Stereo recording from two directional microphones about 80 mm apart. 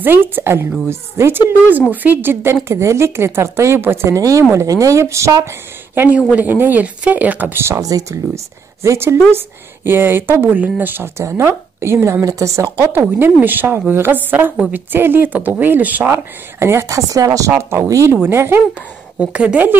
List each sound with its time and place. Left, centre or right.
0.0 s a woman's voice: right
1.7 s a woman's voice: right
5.9 s speech: centre
7.8 s speech: right
8.8 s a woman's voice: right
11.2 s a woman's voice: right
12.3 s a woman's voice: right
13.0 s speech: right
17.5 s a woman's voice: right
19.1 s a woman's voice: centre